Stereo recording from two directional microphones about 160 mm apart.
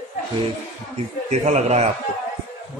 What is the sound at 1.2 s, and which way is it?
Speech, 45° right (ahead or behind).